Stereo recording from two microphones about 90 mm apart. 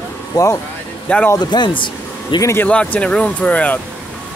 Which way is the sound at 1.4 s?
55° left (ahead or behind).